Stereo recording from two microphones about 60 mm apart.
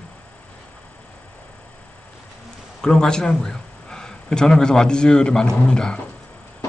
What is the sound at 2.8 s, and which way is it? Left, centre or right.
Speech, centre.